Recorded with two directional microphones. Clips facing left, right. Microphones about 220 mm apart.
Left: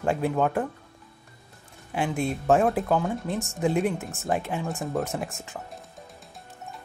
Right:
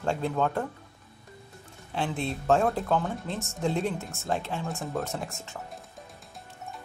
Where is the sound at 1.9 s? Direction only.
15° left (ahead or behind).